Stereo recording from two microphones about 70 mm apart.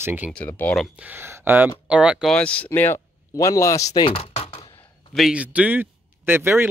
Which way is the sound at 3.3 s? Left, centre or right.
Left.